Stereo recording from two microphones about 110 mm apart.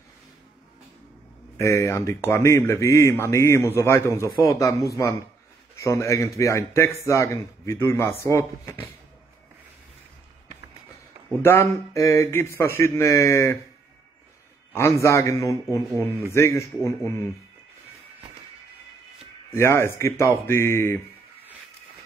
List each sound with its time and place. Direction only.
1.6 s speech: 25° left (ahead or behind)
11.4 s speech: 25° left (ahead or behind)
14.7 s speech: 25° left (ahead or behind)
19.5 s speech: 25° left (ahead or behind)